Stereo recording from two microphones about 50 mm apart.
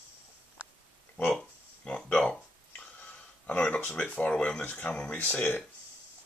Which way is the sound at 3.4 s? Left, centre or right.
Left.